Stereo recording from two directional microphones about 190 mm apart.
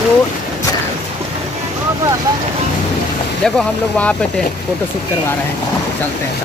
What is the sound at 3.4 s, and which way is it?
Speech, 5° left (ahead or behind).